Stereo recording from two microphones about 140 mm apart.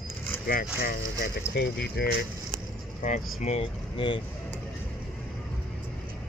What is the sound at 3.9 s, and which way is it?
Speech, 35° left (ahead or behind).